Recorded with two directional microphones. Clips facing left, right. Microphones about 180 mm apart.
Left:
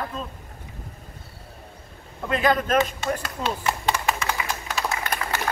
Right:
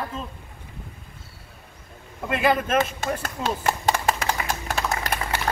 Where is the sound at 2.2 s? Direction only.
5° right (ahead or behind).